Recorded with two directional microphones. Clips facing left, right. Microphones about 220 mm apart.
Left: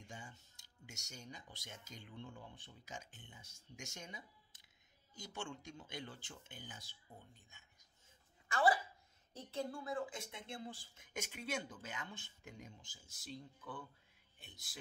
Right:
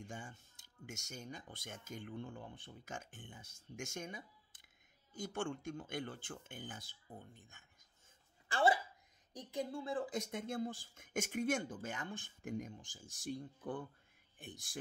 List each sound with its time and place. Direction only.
0.0 s speech: 50° right (ahead or behind)
8.5 s speech: 30° right (ahead or behind)
9.3 s speech: 15° right (ahead or behind); by 14.8 s 50° right (ahead or behind)